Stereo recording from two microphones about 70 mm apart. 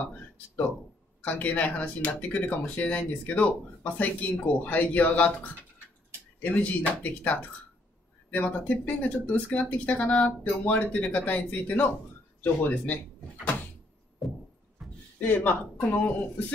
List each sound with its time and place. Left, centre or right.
0.0 s speech: left
14.2 s music: centre
14.8 s a sound: centre
15.1 s speech: left